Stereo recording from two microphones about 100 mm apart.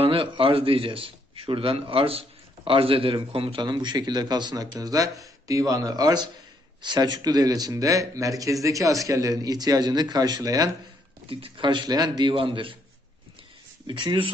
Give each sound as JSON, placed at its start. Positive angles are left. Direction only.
{"t": 0.0, "sound": "a man's voice", "side_deg": -65}
{"t": 3.6, "sound": "speech", "side_deg": -45}
{"t": 11.2, "sound": "speech", "side_deg": -60}
{"t": 13.8, "sound": "a man's voice", "side_deg": -55}